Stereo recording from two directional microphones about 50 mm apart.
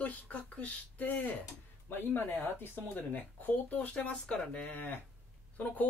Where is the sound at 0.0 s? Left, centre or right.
Left.